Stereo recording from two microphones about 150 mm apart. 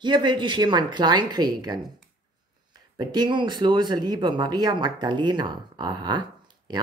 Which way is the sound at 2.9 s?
30° right (ahead or behind).